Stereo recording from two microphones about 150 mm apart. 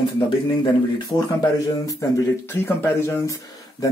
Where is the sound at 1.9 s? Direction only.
20° left (ahead or behind).